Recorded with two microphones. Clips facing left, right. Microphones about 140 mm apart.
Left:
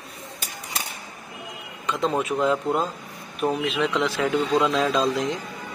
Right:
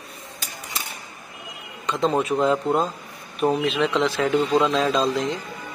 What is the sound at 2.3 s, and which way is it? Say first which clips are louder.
Speech: right 2 dB; 30° right (ahead or behind).